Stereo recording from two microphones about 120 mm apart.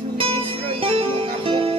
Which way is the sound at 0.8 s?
50° right (ahead or behind).